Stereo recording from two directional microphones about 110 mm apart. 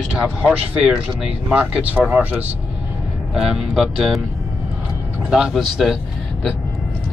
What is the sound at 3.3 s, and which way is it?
Speech, 5° right (ahead or behind).